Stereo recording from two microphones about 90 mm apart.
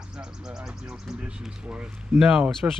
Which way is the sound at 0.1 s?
5° right (ahead or behind).